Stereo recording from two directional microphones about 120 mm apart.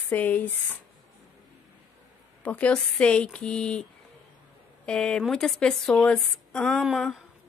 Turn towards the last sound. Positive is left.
turn(degrees=0)  # may be behind; listen again after turning